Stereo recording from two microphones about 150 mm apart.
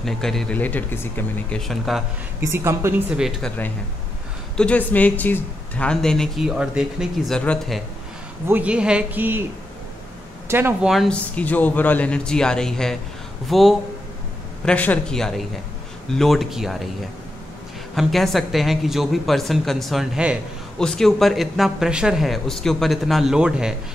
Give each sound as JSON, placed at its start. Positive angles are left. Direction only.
{"t": 0.0, "sound": "a man's voice", "side_deg": 5}
{"t": 1.7, "sound": "speech", "side_deg": 0}
{"t": 2.4, "sound": "speech", "side_deg": -15}
{"t": 3.2, "sound": "speech", "side_deg": -5}
{"t": 4.6, "sound": "speech", "side_deg": 10}
{"t": 8.5, "sound": "speech", "side_deg": -10}
{"t": 10.5, "sound": "speech", "side_deg": -15}
{"t": 10.9, "sound": "a man's voice", "side_deg": 5}
{"t": 17.9, "sound": "speech", "side_deg": 0}